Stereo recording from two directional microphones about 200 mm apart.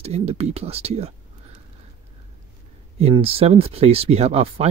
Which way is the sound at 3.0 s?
30° right (ahead or behind).